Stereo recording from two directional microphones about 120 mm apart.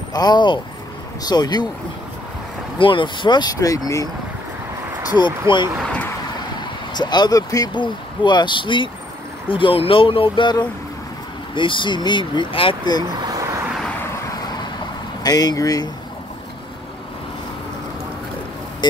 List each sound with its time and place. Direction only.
0.1 s speech: 35° left (ahead or behind)
2.8 s speech: 45° left (ahead or behind)
5.5 s speech: 45° left (ahead or behind)
6.9 s speech: 35° left (ahead or behind)
13.2 s vehicle: 30° right (ahead or behind)
13.7 s vehicle: 10° left (ahead or behind)
14.3 s vehicle: 35° left (ahead or behind)
15.2 s speech: 35° left (ahead or behind)